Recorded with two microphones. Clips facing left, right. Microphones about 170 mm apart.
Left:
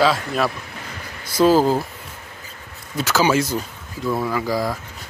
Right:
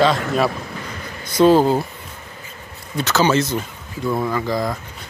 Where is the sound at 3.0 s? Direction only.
10° left (ahead or behind).